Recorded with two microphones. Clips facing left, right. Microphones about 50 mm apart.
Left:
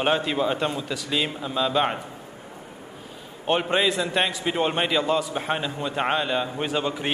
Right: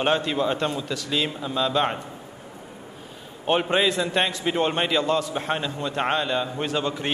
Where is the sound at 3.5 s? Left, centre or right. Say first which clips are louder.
Right 1 dB; centre.